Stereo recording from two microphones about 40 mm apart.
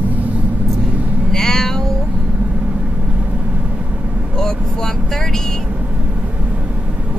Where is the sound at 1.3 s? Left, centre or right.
Centre.